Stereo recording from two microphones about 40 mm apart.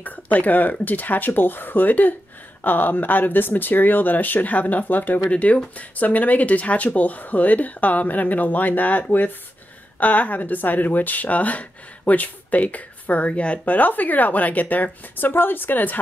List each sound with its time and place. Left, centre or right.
0.0 s speech: left
5.3 s speech: left
13.7 s speech: left